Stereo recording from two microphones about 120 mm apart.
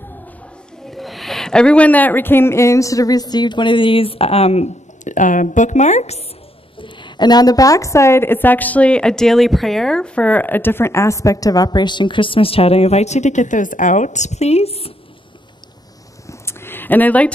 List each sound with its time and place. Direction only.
0.8 s a woman's voice: centre (ahead or behind); by 6.2 s 65° left (ahead or behind)
6.8 s a woman's voice: 40° left (ahead or behind); by 14.9 s 55° left (ahead or behind)
16.3 s a sound: 20° left (ahead or behind)